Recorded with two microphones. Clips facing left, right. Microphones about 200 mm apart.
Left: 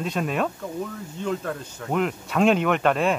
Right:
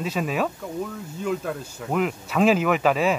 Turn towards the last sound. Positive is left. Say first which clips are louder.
# right 1 dB
turn(degrees=-5)  # may be behind; listen again after turning